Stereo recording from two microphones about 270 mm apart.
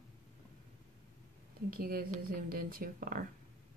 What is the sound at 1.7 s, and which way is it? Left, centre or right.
A woman's voice, right.